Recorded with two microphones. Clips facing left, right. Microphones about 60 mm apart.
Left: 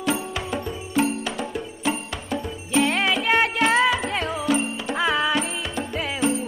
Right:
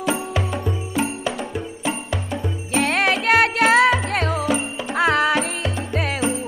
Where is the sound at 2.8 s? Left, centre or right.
Right.